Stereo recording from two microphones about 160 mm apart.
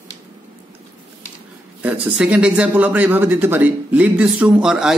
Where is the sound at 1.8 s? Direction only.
10° right (ahead or behind).